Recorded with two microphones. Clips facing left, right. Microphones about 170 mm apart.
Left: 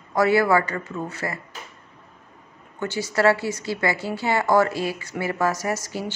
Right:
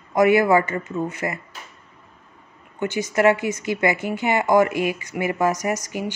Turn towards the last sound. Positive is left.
turn(degrees=-15)  # may be behind; listen again after turning